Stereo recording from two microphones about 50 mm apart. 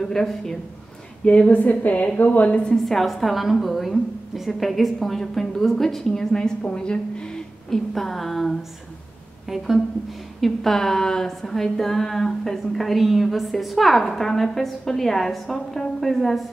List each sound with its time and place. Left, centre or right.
0.0 s a woman's voice: centre
1.2 s a woman's voice: left
2.8 s a woman's voice: centre
7.7 s a woman's voice: centre
9.5 s a woman's voice: centre
10.4 s a woman's voice: centre